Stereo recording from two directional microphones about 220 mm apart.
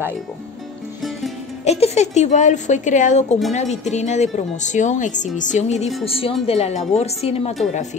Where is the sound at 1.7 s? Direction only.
30° left (ahead or behind).